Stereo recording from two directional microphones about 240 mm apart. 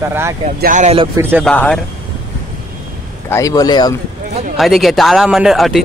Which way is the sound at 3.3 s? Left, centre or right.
Centre.